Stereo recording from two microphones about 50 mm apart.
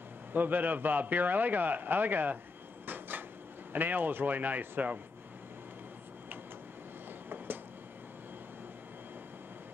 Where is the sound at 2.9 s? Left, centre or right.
Right.